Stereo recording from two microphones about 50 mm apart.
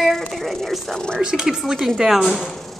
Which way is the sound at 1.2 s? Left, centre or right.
Centre.